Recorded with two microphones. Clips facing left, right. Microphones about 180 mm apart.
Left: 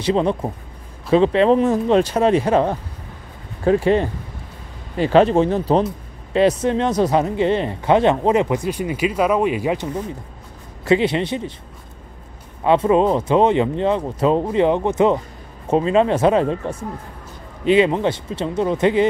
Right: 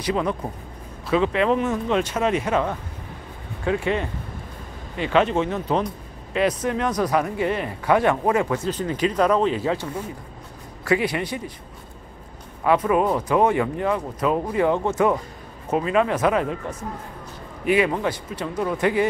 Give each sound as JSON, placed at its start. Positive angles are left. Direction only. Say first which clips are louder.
{"t": 0.0, "sound": "speech", "louder": "left 5 dB", "side_deg": 30}
{"t": 12.6, "sound": "speech", "louder": "left 4 dB", "side_deg": 25}